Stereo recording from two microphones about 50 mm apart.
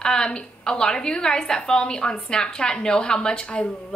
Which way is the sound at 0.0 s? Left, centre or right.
Centre.